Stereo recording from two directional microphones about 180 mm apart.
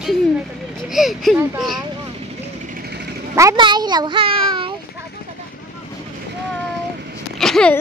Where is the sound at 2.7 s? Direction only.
60° right (ahead or behind).